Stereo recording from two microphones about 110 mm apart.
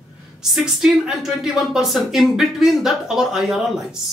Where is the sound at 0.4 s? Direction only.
5° right (ahead or behind).